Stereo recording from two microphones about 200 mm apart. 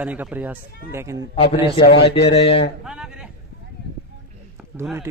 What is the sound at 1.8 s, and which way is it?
Speech, 55° left (ahead or behind).